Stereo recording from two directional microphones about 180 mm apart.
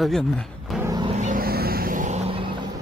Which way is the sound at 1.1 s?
45° right (ahead or behind).